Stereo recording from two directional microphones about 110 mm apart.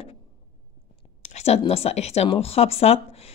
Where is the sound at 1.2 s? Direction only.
80° left.